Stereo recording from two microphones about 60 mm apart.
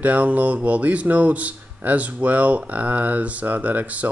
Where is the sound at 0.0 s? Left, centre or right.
Right.